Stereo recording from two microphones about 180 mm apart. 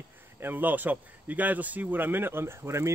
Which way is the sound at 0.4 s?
10° right (ahead or behind).